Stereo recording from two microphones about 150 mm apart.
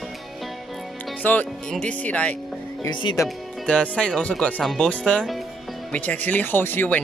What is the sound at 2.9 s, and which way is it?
Speech, 30° left (ahead or behind).